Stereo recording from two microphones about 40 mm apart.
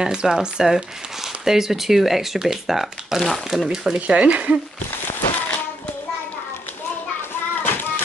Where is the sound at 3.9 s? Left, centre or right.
Right.